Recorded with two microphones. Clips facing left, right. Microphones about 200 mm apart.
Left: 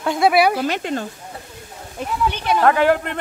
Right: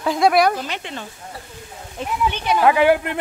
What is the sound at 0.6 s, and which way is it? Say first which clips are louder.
Speech: left 8 dB; 45° left (ahead or behind).